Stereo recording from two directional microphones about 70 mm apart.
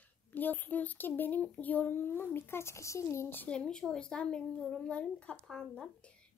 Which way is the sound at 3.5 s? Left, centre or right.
Centre.